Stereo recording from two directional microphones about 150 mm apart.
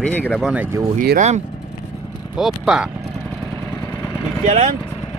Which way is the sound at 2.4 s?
5° right (ahead or behind).